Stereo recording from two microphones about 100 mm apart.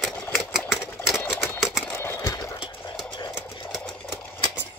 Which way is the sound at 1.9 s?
25° left (ahead or behind).